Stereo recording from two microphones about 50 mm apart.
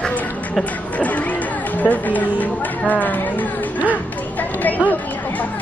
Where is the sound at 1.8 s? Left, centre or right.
Left.